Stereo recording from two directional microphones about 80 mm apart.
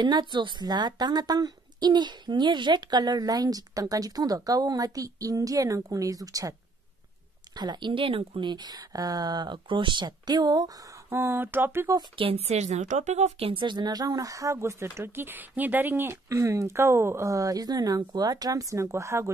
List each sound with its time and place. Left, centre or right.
0.0 s speech: right
7.5 s speech: right
11.1 s a sound: right
12.2 s a woman's voice: right
13.6 s speech: right
16.3 s speech: right